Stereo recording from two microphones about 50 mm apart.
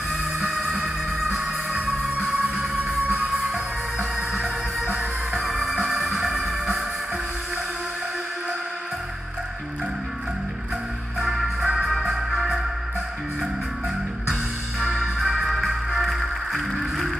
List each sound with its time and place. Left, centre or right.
1.3 s music: centre
4.3 s music: right
11.1 s music: centre
11.6 s music: centre
11.9 s music: centre
15.0 s organ: centre
15.4 s music: centre